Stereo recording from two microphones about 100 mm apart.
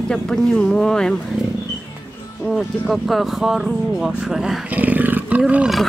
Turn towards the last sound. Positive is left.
turn(degrees=-10)  # may be behind; listen again after turning